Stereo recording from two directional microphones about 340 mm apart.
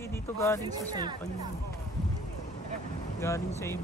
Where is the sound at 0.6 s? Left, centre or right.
Centre.